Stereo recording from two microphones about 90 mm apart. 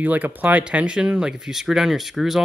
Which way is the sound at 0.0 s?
20° right (ahead or behind).